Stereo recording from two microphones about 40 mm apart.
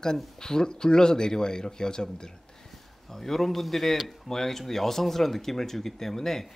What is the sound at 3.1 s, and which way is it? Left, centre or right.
Speech, centre.